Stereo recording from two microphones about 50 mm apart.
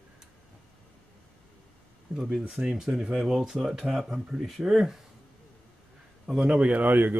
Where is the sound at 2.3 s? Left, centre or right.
Centre.